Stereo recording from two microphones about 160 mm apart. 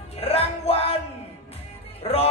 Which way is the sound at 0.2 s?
40° left (ahead or behind).